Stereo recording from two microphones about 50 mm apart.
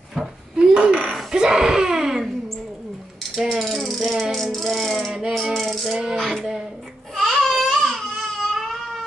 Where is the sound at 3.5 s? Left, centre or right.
Centre.